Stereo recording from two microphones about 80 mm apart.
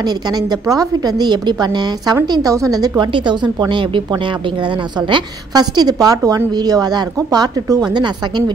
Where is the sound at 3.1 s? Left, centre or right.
Right.